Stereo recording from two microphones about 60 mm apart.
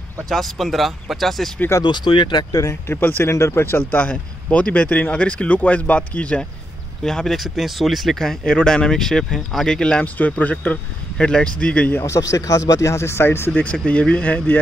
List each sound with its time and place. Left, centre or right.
0.3 s speech: centre
1.7 s speech: left
2.7 s speech: left
3.3 s speech: left
7.0 s speech: centre
9.8 s speech: centre
12.0 s a man's voice: left
12.9 s speech: left
13.8 s speech: centre